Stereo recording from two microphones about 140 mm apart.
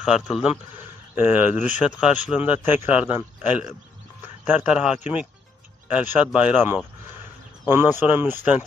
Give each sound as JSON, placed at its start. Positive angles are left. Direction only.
{"t": 0.0, "sound": "a man's voice", "side_deg": -5}